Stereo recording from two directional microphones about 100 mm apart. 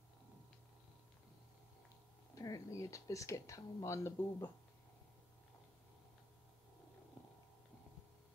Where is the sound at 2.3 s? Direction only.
35° left (ahead or behind).